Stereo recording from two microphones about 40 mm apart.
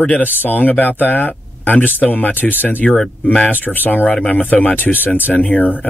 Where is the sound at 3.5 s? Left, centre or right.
Left.